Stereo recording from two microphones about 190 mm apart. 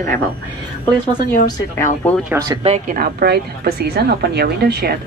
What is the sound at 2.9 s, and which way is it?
Speech, 55° right (ahead or behind).